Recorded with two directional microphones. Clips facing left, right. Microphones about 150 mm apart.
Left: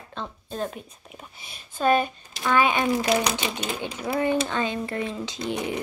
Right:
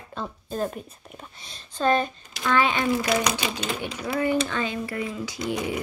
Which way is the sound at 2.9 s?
35° left (ahead or behind).